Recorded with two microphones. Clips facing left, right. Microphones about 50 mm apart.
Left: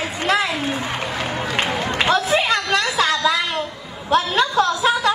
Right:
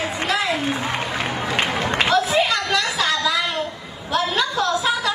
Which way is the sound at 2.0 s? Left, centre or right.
Left.